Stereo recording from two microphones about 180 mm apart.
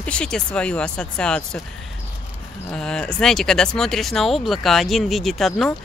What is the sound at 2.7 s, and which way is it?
Speech, 5° left (ahead or behind).